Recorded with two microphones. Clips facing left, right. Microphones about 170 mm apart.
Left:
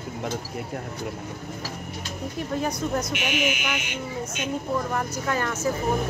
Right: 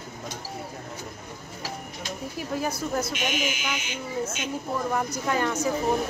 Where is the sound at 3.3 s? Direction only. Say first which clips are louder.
Left 3 dB; 60° left (ahead or behind).